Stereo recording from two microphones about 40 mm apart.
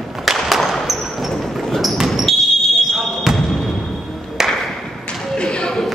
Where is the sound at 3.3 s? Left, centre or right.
Centre.